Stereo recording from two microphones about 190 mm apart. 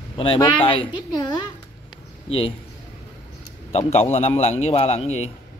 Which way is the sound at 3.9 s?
30° left (ahead or behind).